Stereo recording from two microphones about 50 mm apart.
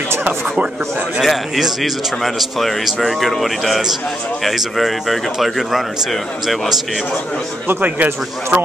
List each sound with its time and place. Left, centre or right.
1.2 s a man's voice: centre
7.6 s a man's voice: right